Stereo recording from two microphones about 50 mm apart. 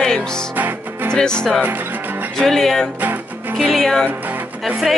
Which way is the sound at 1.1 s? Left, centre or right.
Centre.